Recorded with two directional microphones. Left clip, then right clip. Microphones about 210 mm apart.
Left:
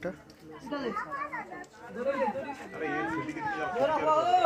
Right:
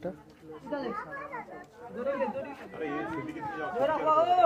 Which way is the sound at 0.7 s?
50° left (ahead or behind).